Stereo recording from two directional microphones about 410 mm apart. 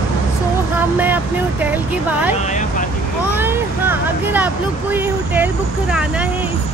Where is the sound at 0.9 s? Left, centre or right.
Centre.